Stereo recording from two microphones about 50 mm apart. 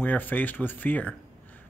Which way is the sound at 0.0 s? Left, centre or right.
Left.